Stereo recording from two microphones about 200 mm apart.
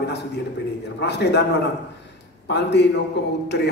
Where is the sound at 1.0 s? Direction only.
55° left (ahead or behind).